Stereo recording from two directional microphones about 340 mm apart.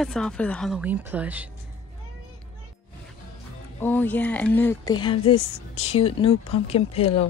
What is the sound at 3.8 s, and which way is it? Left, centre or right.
A woman's voice, centre.